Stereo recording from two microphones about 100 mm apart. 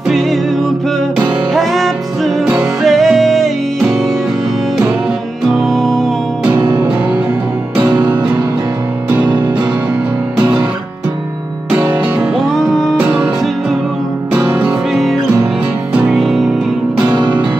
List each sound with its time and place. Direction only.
1.5 s music: centre (ahead or behind)
5.5 s music: centre (ahead or behind)
7.7 s music: 15° right (ahead or behind)
11.7 s music: 15° right (ahead or behind)
12.4 s music: centre (ahead or behind)
13.0 s music: 15° right (ahead or behind)
14.3 s music: 20° right (ahead or behind)
14.9 s music: centre (ahead or behind)